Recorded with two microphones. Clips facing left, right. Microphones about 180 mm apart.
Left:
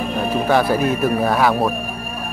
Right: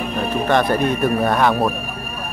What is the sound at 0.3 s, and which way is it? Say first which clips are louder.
Speech: left 1 dB; 5° left (ahead or behind).